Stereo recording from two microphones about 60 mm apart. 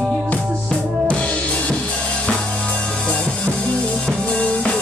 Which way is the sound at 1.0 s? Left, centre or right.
Centre.